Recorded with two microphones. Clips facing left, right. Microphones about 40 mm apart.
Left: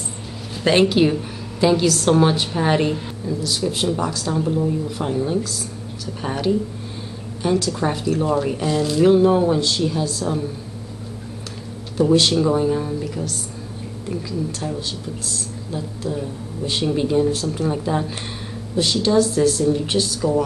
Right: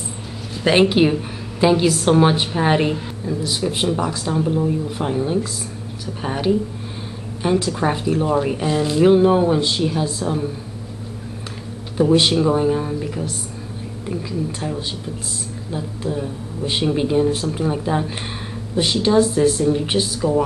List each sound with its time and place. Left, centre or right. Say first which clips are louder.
0.7 s a woman's voice: right 1 dB; centre
12.0 s a woman's voice: right 1 dB; centre